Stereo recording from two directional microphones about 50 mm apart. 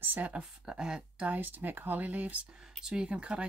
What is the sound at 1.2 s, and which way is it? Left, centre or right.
Speech, right.